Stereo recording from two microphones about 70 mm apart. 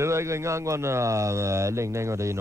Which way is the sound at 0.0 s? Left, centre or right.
Right.